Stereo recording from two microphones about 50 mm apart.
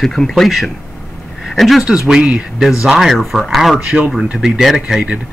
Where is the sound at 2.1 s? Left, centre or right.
Centre.